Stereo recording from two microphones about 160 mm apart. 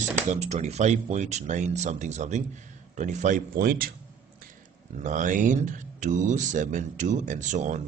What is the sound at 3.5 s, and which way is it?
Speech, 70° right (ahead or behind).